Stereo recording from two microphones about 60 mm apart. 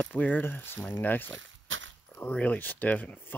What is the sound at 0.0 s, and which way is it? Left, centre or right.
Speech, left.